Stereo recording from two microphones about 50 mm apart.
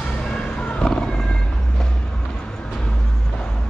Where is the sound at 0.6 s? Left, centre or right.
Centre.